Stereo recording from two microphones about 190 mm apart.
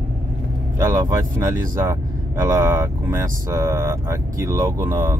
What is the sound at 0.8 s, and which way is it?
Speech, 15° right (ahead or behind).